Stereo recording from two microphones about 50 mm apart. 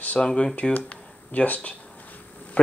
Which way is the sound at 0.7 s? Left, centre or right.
Left.